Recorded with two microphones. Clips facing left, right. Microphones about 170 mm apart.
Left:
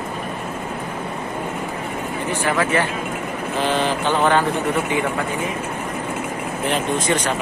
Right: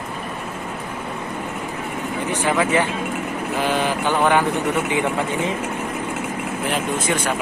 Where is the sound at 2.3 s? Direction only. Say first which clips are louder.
Right 1 dB; 15° right (ahead or behind).